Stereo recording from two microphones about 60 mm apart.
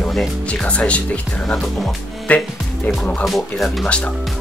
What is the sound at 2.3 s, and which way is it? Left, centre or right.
Speech, left.